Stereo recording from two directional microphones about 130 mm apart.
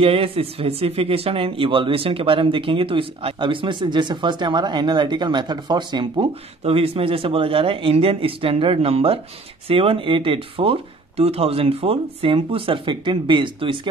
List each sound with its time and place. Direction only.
0.0 s speech: 45° right (ahead or behind)
6.6 s speech: 50° right (ahead or behind)